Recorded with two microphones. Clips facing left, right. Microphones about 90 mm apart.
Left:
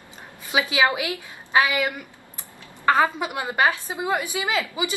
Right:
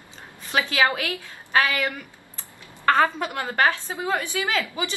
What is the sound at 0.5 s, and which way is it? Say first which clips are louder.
A woman's voice: left 1 dB; 15° left (ahead or behind).